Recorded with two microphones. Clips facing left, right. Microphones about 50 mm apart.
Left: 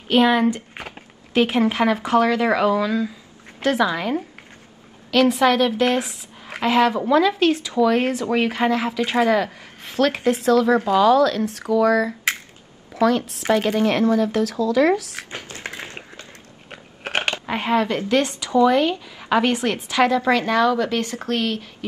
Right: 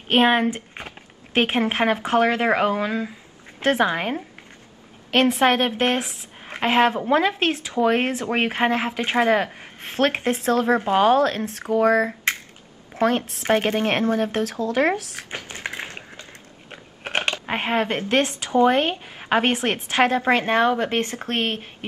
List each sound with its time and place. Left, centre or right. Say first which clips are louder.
0.1 s a woman's voice: left 1 dB; right
0.7 s a sound: left 2 dB; centre
1.3 s a woman's voice: left 2 dB; right
15.2 s a sound: right 1 dB; right
16.6 s biting: left 2 dB; centre
17.5 s a woman's voice: left 3 dB; right